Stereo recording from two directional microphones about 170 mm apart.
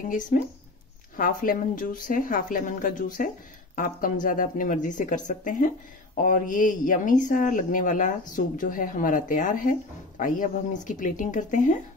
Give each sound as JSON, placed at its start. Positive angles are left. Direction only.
{"t": 0.3, "sound": "speech", "side_deg": 50}